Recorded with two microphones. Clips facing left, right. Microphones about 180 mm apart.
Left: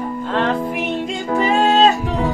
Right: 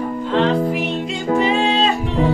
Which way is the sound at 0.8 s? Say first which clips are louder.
Even; 45° left (ahead or behind).